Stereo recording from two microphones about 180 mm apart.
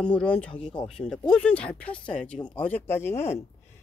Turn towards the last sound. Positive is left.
turn(degrees=15)  # may be behind; listen again after turning